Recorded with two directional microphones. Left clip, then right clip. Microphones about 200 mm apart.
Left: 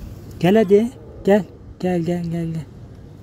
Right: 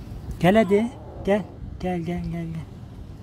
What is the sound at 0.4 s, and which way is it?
Speech, 5° left (ahead or behind).